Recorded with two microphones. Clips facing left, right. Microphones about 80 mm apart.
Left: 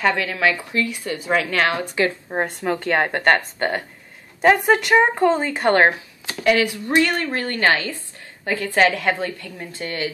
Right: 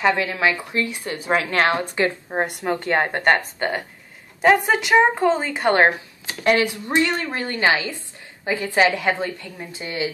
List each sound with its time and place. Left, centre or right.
0.0 s a woman's voice: right
2.2 s a woman's voice: centre
4.4 s speech: centre
6.4 s a woman's voice: right